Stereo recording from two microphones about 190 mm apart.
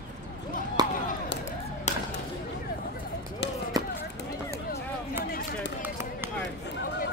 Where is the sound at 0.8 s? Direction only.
20° right (ahead or behind).